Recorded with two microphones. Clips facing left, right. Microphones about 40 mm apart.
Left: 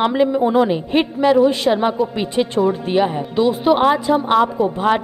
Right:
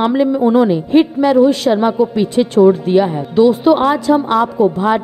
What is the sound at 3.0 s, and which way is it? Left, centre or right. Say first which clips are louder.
A woman's voice: right 5 dB; centre.